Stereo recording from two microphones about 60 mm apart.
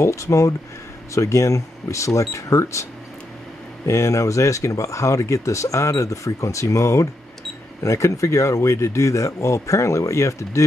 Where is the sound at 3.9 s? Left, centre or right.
Left.